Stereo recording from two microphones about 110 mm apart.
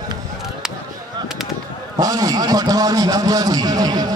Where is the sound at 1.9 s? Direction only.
35° right (ahead or behind).